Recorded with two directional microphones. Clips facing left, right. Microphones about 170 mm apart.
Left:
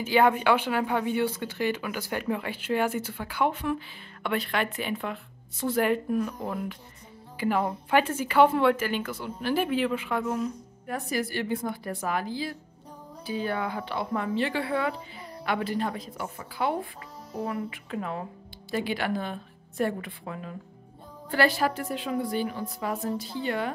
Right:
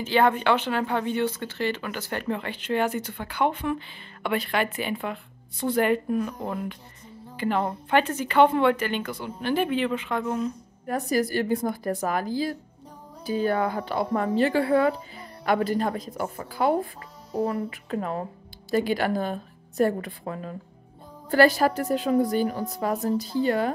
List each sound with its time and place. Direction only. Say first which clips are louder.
0.0 s speech: even; 10° left (ahead or behind)
10.9 s a woman's voice: right 6 dB; 40° right (ahead or behind)